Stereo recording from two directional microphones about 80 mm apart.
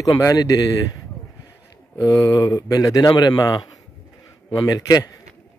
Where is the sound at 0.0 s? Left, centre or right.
Left.